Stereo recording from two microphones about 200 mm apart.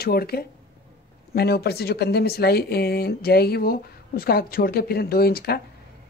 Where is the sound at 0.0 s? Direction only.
50° left (ahead or behind).